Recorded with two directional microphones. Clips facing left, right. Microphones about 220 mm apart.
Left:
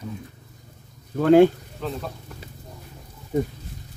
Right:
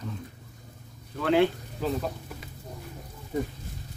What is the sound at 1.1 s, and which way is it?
Speech, 45° left (ahead or behind).